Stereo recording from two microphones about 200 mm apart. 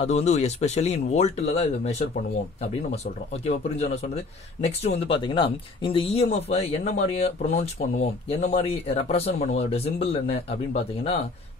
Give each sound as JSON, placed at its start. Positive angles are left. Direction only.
{"t": 0.0, "sound": "speech", "side_deg": 35}
{"t": 3.4, "sound": "speech", "side_deg": 30}